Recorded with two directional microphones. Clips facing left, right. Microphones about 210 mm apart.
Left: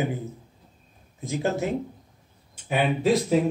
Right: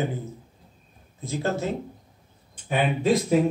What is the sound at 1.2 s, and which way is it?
Speech, 15° left (ahead or behind).